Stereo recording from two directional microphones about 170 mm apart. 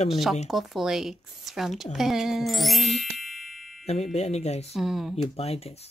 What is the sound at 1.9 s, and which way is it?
Music, centre (ahead or behind).